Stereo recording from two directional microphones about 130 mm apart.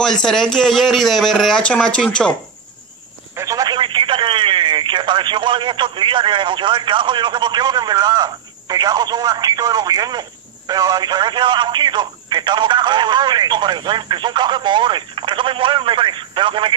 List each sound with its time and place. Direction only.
0.0 s a man's voice: 5° left (ahead or behind)
3.3 s speech: 25° right (ahead or behind)